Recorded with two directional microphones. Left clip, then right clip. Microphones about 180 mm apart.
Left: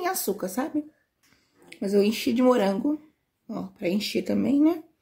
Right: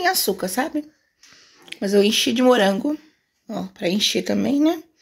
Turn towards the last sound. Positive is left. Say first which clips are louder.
# right 3 dB
turn(degrees=-15)  # may be behind; listen again after turning